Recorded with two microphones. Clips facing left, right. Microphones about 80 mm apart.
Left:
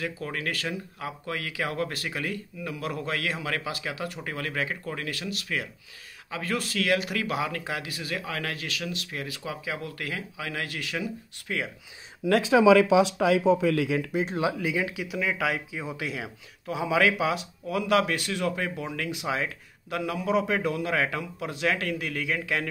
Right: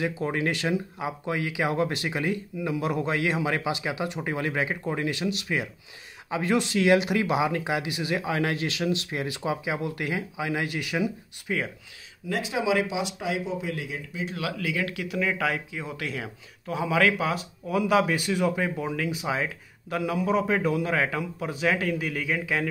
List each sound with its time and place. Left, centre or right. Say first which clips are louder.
0.0 s speech: right 5 dB; right
12.2 s speech: left 7 dB; left
13.7 s speech: left 9 dB; left
14.2 s speech: left 3 dB; left; by 22.7 s centre